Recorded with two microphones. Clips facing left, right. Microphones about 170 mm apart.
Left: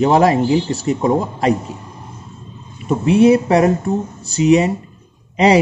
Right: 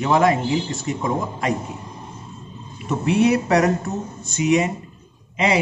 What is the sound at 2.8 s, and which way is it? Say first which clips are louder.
Speech: left 6 dB; 25° left (ahead or behind).